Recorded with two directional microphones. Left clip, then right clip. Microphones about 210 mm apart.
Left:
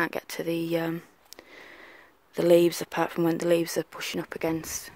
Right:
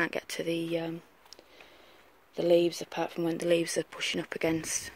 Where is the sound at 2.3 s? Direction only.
35° left (ahead or behind); by 4.9 s 5° left (ahead or behind).